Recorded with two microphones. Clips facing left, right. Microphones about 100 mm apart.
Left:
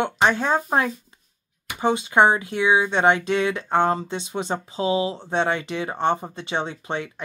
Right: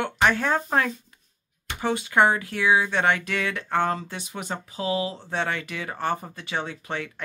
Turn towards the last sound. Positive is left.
turn(degrees=20)  # may be behind; listen again after turning